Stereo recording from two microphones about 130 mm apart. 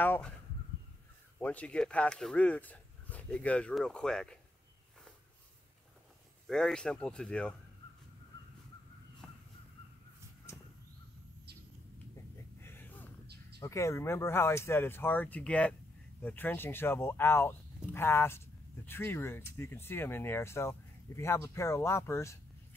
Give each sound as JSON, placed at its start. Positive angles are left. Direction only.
{"t": 0.0, "sound": "speech", "side_deg": 15}
{"t": 1.4, "sound": "speech", "side_deg": 10}
{"t": 6.4, "sound": "speech", "side_deg": 5}
{"t": 9.2, "sound": "crow", "side_deg": 5}
{"t": 12.6, "sound": "a sound", "side_deg": 15}
{"t": 13.6, "sound": "speech", "side_deg": 25}